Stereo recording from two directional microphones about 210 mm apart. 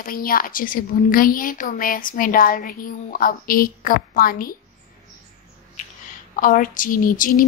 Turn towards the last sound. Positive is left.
turn(degrees=40)  # may be behind; listen again after turning